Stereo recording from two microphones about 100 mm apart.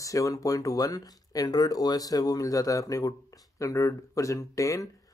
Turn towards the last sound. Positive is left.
turn(degrees=35)  # may be behind; listen again after turning